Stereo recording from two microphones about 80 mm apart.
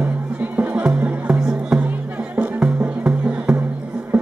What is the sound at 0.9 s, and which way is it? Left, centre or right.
Music, centre.